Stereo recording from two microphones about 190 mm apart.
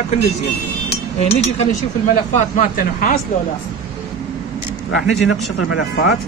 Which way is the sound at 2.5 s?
45° left (ahead or behind).